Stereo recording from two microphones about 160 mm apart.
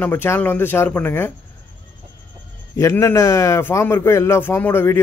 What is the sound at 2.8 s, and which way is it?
A man's voice, 20° left (ahead or behind).